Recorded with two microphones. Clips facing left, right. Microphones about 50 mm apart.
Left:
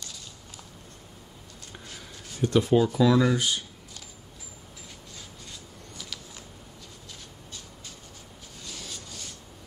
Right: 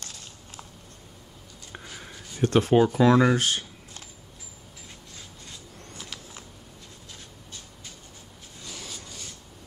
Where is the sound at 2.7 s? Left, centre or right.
Right.